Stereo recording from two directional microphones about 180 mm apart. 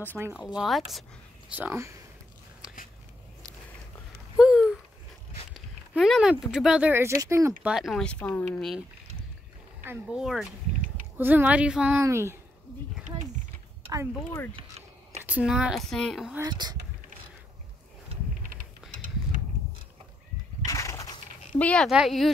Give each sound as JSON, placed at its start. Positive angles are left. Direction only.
{"t": 0.6, "sound": "speech", "side_deg": 0}
{"t": 1.5, "sound": "speech", "side_deg": -10}
{"t": 4.4, "sound": "a sound", "side_deg": -5}
{"t": 5.5, "sound": "speech", "side_deg": 0}
{"t": 7.6, "sound": "speech", "side_deg": 0}
{"t": 9.8, "sound": "speech", "side_deg": -5}
{"t": 14.1, "sound": "speech", "side_deg": 15}
{"t": 15.2, "sound": "speech", "side_deg": -5}
{"t": 16.4, "sound": "speech", "side_deg": -25}
{"t": 20.6, "sound": "a sound", "side_deg": 15}
{"t": 21.5, "sound": "speech", "side_deg": 5}